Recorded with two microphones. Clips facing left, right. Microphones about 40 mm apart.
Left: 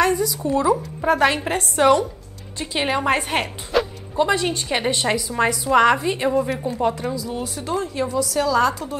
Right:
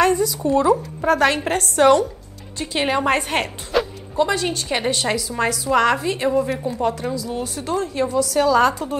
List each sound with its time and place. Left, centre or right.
0.0 s a sound: centre
1.0 s a woman's voice: centre
8.4 s speech: centre